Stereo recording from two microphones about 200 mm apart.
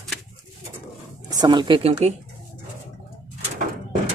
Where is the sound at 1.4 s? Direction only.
20° right (ahead or behind).